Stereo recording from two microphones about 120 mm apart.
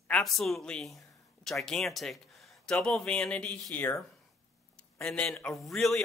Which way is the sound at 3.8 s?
20° left (ahead or behind).